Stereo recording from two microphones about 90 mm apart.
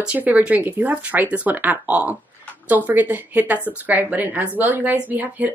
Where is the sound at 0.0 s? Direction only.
15° right (ahead or behind).